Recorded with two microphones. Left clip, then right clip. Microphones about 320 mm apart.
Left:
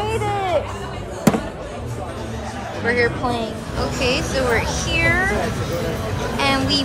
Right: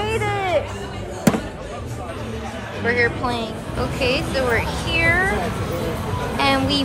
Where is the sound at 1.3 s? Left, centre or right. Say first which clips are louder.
Left 1 dB; centre.